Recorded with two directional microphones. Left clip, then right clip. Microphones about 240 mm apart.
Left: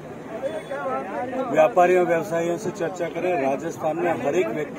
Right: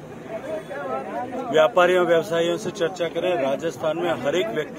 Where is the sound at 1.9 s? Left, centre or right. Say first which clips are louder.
Right 1 dB; centre.